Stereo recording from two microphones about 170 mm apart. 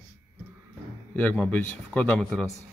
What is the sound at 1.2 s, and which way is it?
A man's voice, 10° left (ahead or behind).